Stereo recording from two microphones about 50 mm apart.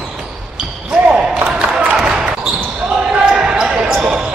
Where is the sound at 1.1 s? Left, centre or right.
Centre.